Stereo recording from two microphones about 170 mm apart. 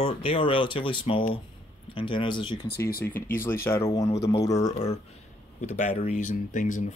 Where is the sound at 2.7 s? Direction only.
65° left (ahead or behind).